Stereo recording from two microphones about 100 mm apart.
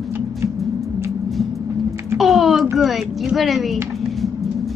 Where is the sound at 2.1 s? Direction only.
Centre (ahead or behind).